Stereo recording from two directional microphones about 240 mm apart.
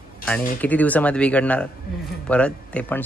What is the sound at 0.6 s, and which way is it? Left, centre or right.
Speech, centre.